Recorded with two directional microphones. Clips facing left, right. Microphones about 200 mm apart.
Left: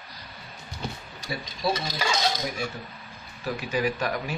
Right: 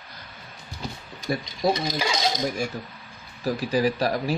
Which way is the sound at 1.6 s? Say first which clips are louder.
Right 4 dB; 45° right (ahead or behind).